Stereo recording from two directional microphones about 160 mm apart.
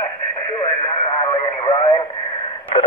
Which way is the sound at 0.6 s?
30° left (ahead or behind).